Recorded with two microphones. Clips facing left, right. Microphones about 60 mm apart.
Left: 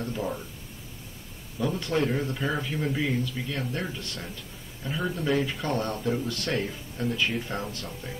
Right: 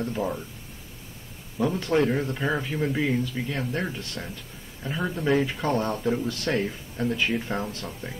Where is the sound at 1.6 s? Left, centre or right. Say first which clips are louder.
Right 3 dB; right.